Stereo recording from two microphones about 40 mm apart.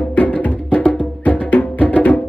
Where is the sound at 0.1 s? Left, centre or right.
Left.